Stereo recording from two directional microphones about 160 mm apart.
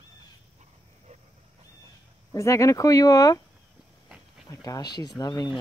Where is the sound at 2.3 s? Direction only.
20° left (ahead or behind).